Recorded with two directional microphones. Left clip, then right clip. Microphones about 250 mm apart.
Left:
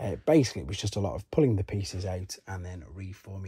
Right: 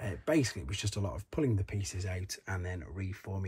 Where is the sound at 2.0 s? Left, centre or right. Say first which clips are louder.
Left 5 dB; centre.